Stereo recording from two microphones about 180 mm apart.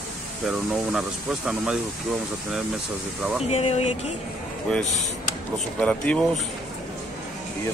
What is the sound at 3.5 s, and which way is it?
Speech, 35° left (ahead or behind).